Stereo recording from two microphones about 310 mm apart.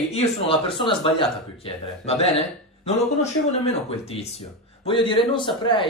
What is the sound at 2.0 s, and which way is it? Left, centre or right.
Speech, centre.